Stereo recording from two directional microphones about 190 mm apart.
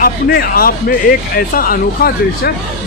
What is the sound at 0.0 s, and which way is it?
Speech, 50° left (ahead or behind).